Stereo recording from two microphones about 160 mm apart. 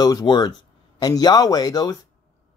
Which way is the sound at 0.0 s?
25° left (ahead or behind).